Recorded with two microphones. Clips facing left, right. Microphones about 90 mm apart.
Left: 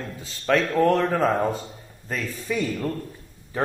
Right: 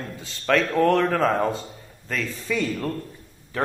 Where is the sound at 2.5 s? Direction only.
15° left (ahead or behind).